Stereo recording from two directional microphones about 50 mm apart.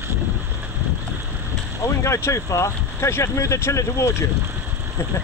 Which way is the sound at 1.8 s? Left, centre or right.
Left.